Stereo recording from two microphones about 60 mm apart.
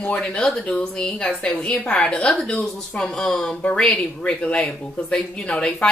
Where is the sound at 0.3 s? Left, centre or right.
Centre.